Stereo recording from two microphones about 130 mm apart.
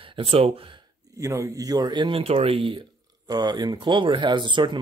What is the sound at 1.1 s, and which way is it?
Speech, 25° right (ahead or behind).